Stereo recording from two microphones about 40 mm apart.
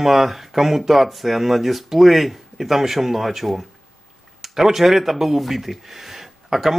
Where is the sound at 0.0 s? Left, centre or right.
Centre.